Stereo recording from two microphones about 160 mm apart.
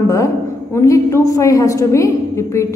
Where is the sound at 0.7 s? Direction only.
20° left (ahead or behind).